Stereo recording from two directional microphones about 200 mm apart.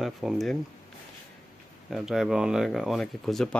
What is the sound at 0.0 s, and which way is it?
Speech, centre (ahead or behind).